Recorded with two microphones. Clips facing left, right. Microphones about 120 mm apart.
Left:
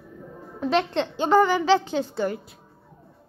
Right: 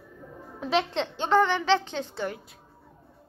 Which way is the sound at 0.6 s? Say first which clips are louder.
Left 3 dB; centre (ahead or behind).